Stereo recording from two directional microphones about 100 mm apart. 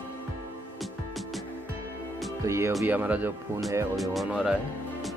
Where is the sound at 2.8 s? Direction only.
15° right (ahead or behind).